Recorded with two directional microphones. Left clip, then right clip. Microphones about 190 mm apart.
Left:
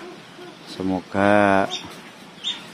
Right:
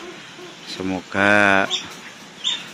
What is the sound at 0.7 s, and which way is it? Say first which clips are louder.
Speech: right 1 dB; 10° left (ahead or behind).